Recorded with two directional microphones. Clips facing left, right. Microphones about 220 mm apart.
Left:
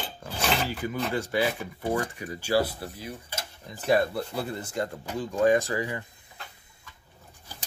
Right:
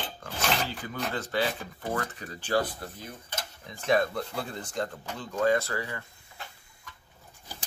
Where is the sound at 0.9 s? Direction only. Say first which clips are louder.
Left 4 dB; 10° left (ahead or behind).